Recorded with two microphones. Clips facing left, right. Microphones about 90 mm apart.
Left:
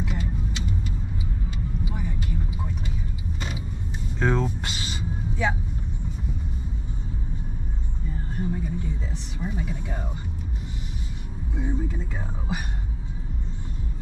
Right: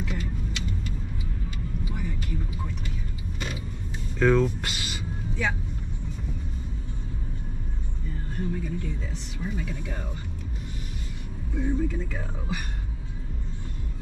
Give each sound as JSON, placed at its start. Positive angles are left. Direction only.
{"t": 0.0, "sound": "vehicle", "side_deg": 10}
{"t": 4.2, "sound": "speech", "side_deg": 20}
{"t": 5.3, "sound": "vehicle", "side_deg": 15}
{"t": 8.4, "sound": "a sound", "side_deg": 15}
{"t": 9.4, "sound": "speech", "side_deg": 15}
{"t": 11.5, "sound": "speech", "side_deg": 20}